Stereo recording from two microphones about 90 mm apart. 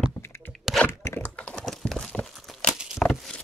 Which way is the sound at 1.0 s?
25° left (ahead or behind).